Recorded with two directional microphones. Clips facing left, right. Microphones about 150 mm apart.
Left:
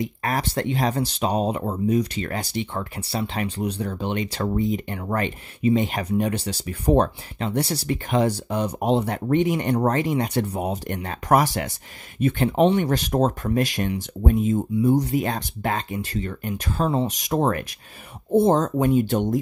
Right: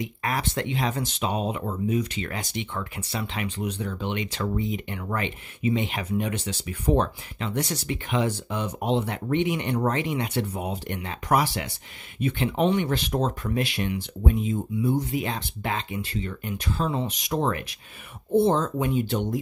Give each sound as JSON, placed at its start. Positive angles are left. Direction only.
{"t": 0.0, "sound": "speech", "side_deg": 40}